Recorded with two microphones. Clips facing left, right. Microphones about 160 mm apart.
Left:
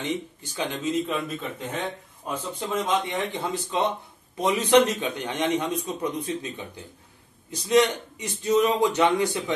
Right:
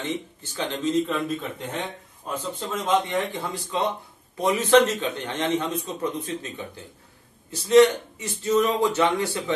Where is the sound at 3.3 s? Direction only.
20° left (ahead or behind).